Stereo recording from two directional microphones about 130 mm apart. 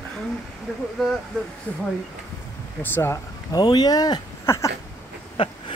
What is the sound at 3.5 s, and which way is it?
Speech, 35° left (ahead or behind).